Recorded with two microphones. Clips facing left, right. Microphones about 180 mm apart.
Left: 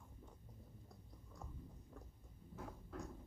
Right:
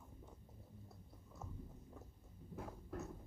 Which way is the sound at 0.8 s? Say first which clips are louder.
Right 1 dB; 5° right (ahead or behind).